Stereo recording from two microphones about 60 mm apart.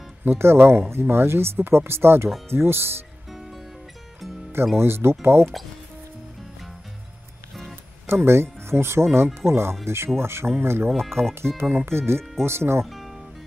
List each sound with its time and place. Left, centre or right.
0.2 s speech: right
3.3 s music: centre
4.7 s speech: right
5.4 s speech: centre
8.1 s speech: right
11.0 s speech: centre
11.3 s speech: right
12.8 s music: centre